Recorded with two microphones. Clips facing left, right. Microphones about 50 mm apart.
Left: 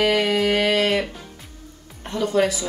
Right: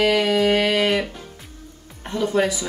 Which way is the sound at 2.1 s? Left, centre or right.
Centre.